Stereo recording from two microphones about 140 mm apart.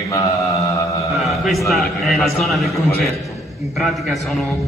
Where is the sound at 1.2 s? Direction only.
Centre (ahead or behind).